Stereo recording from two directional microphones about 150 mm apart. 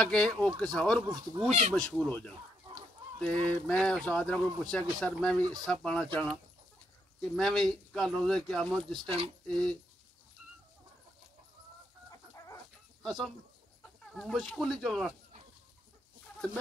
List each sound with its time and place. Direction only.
0.0 s speech: 5° left (ahead or behind)
1.0 s speech: 25° right (ahead or behind)
1.9 s speech: 10° left (ahead or behind)
7.2 s speech: centre (ahead or behind)
9.1 s speech: 40° right (ahead or behind)
13.0 s speech: centre (ahead or behind)